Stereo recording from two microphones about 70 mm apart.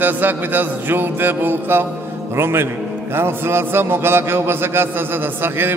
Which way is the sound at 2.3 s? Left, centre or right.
Right.